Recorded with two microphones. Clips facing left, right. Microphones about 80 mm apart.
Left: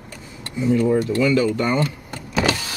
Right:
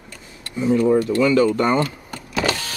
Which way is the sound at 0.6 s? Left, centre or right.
Right.